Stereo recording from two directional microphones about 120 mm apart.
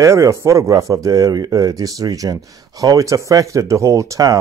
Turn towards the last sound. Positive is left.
turn(degrees=-30)  # may be behind; listen again after turning